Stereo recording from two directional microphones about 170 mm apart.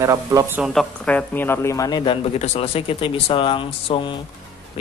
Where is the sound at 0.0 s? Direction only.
20° right (ahead or behind).